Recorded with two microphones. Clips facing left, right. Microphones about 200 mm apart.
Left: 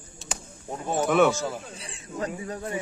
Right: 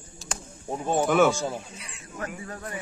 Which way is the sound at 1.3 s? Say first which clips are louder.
Even; 15° right (ahead or behind).